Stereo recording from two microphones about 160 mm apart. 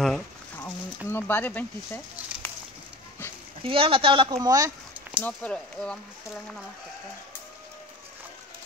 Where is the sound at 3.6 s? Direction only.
35° right (ahead or behind).